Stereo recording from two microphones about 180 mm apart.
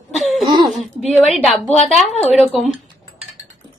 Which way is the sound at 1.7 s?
35° left (ahead or behind).